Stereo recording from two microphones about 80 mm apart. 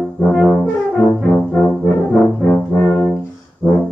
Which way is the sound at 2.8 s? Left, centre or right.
Left.